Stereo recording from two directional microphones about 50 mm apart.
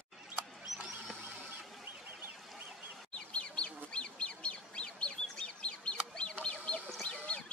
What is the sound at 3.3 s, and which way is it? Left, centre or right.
Bird, left.